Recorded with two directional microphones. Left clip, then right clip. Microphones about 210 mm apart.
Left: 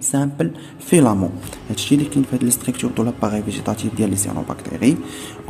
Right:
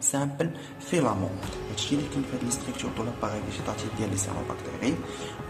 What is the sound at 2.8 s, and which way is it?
Speech, 35° left (ahead or behind).